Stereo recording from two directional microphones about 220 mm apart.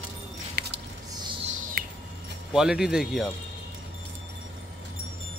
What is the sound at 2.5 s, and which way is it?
Speech, 5° right (ahead or behind).